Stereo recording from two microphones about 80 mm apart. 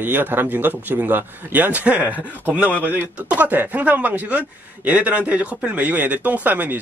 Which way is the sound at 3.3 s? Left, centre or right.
Right.